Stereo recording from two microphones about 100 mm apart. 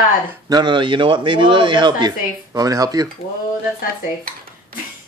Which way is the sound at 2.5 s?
35° right (ahead or behind).